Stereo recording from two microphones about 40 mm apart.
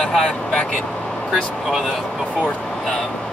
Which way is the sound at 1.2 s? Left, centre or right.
Centre.